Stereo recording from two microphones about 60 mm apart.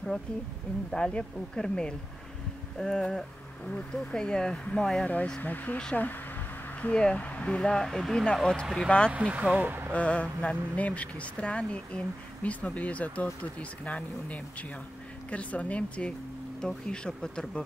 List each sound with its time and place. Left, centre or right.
0.9 s speech: centre
5.0 s speech: left
6.8 s speech: centre
9.1 s speech: right
9.9 s speech: left